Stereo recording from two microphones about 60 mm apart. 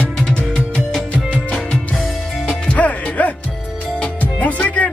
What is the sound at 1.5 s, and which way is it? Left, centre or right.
Music, centre.